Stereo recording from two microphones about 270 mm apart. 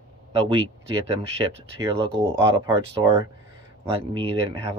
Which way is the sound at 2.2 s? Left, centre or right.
Centre.